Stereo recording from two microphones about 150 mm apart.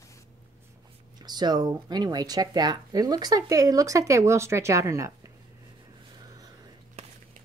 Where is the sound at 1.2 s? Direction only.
30° right (ahead or behind).